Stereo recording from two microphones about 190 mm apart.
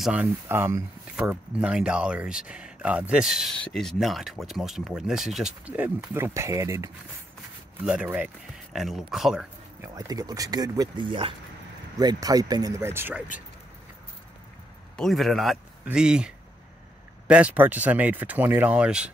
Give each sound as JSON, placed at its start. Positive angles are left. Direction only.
{"t": 0.0, "sound": "speech", "side_deg": -5}
{"t": 7.8, "sound": "speech", "side_deg": -5}
{"t": 9.9, "sound": "speech", "side_deg": -20}
{"t": 15.0, "sound": "speech", "side_deg": 0}